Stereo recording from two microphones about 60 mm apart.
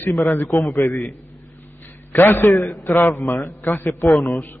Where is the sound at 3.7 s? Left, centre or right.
Left.